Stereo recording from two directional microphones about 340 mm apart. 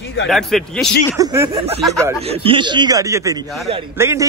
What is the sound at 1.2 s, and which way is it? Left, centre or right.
Speech, centre.